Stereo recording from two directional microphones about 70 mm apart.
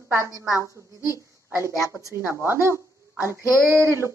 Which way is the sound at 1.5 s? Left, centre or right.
Right.